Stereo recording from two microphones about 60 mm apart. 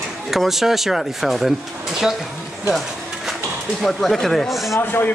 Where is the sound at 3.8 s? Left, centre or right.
Centre.